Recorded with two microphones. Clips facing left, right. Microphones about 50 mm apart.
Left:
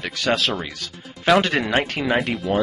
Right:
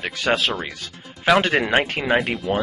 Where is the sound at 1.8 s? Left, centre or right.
Right.